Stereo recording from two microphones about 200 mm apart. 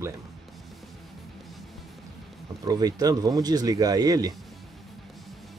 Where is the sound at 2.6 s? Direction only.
20° right (ahead or behind).